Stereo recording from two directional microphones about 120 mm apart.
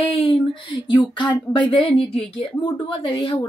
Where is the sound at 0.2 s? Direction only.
45° left (ahead or behind).